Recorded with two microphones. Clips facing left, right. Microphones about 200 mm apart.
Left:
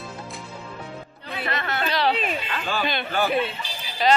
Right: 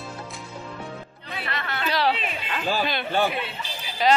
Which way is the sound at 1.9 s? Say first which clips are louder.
Even; 5° right (ahead or behind).